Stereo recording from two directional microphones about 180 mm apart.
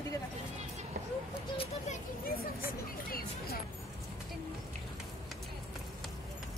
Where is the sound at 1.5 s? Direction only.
30° left (ahead or behind).